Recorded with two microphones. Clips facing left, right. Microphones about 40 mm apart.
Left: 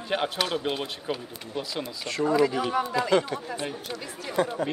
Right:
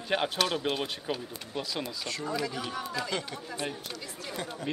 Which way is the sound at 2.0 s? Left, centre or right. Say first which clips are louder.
Left 13 dB; left.